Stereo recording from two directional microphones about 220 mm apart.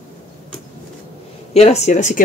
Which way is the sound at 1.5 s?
30° left (ahead or behind).